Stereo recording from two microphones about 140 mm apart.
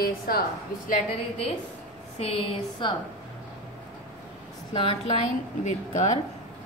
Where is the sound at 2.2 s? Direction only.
40° left (ahead or behind).